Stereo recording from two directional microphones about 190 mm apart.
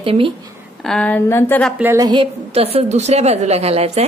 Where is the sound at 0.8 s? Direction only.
5° left (ahead or behind).